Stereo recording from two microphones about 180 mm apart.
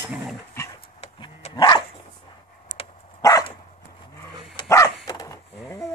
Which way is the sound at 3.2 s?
20° left (ahead or behind).